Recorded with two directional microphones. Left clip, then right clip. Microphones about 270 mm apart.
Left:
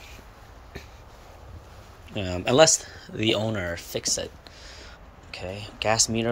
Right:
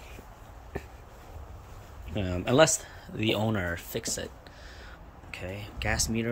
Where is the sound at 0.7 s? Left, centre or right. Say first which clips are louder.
Right 3 dB; centre.